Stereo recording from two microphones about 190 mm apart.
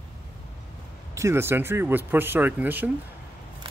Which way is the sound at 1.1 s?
15° right (ahead or behind).